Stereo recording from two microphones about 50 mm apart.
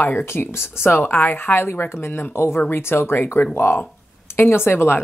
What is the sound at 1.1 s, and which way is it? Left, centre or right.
Speech, left.